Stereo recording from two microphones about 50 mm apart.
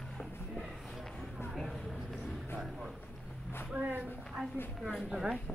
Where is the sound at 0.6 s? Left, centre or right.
Centre.